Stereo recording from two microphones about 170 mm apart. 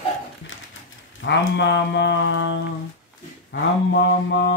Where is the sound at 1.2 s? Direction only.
90° left.